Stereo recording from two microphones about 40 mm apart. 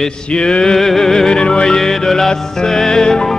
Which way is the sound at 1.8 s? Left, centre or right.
Centre.